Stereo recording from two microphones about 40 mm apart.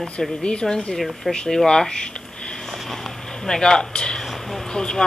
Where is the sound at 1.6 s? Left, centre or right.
Centre.